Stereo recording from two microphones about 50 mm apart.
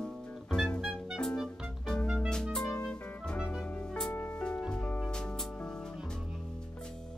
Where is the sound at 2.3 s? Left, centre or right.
Centre.